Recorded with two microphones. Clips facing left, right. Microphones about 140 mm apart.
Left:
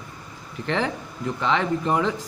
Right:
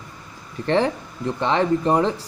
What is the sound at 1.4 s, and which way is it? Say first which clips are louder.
Speech: right 4 dB; 35° right (ahead or behind).